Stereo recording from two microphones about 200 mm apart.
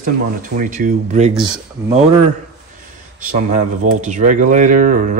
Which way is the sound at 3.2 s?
40° right (ahead or behind).